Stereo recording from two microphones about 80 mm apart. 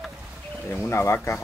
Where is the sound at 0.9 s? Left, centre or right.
Left.